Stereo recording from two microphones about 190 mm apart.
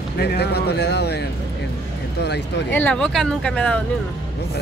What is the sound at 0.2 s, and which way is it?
Speech, 55° left (ahead or behind).